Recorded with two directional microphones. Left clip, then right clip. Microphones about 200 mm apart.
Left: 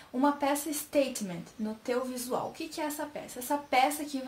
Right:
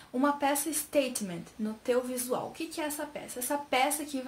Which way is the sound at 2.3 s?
5° right (ahead or behind).